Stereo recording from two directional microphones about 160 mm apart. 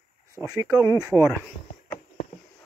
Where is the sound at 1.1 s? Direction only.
10° left (ahead or behind).